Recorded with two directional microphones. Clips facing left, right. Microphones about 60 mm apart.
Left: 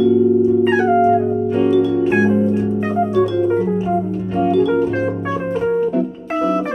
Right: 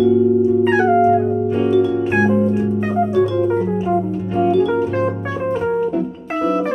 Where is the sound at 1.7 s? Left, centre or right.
Centre.